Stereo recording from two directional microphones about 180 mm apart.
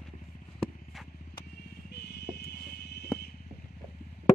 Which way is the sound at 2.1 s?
65° left (ahead or behind).